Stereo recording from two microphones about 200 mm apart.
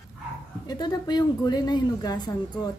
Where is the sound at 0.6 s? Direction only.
20° left (ahead or behind).